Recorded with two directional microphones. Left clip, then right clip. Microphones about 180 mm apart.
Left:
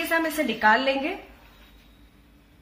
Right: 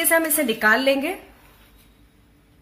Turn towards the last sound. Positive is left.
turn(degrees=-50)  # may be behind; listen again after turning